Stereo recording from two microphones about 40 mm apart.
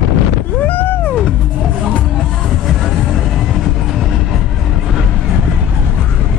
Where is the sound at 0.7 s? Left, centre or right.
Left.